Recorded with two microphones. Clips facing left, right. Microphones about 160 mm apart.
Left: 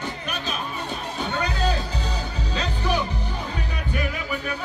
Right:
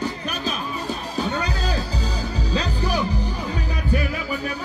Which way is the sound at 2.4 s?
35° right (ahead or behind).